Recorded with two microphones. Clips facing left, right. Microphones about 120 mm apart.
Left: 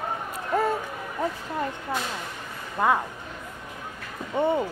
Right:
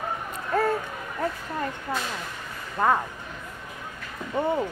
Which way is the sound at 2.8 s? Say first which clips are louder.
Even; 10° left (ahead or behind).